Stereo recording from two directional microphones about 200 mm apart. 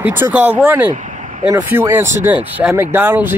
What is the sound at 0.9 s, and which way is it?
Vehicle, 40° right (ahead or behind).